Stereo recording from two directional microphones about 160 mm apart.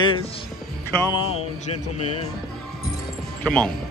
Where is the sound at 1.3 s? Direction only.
40° left (ahead or behind).